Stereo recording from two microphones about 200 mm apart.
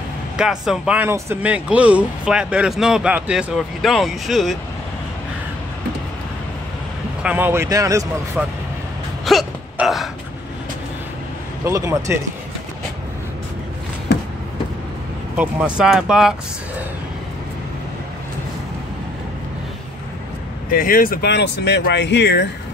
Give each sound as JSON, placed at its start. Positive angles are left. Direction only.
{"t": 0.4, "sound": "speech", "side_deg": -5}
{"t": 7.2, "sound": "speech", "side_deg": -10}
{"t": 9.2, "sound": "a sound", "side_deg": 0}
{"t": 11.6, "sound": "speech", "side_deg": -15}
{"t": 15.3, "sound": "speech", "side_deg": -5}
{"t": 20.7, "sound": "speech", "side_deg": 45}